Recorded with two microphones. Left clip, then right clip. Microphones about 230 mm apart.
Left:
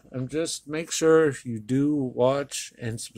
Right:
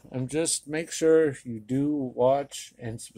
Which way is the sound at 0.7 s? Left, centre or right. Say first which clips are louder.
Left 2 dB; centre.